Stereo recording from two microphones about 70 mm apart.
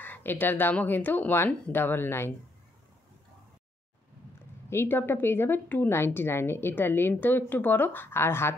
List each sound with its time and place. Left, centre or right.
0.0 s speech: left
4.6 s a woman's voice: left